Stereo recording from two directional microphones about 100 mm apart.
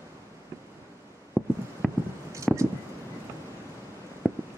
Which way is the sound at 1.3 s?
Centre (ahead or behind).